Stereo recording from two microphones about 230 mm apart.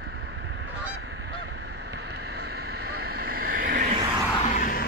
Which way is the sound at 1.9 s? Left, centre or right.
Right.